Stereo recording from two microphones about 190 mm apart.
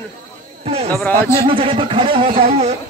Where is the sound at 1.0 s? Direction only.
15° left (ahead or behind).